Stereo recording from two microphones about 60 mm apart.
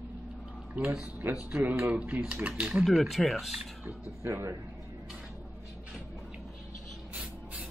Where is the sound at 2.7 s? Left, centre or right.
Centre.